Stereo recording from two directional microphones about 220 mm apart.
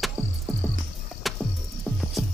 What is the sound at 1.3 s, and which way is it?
Music, centre (ahead or behind).